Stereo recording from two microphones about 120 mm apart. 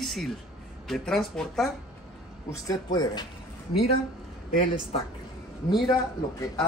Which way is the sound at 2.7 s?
35° left (ahead or behind).